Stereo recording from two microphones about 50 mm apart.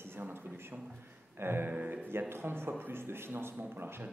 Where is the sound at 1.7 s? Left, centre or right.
Right.